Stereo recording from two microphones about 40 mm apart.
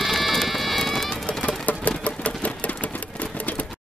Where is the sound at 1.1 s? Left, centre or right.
Left.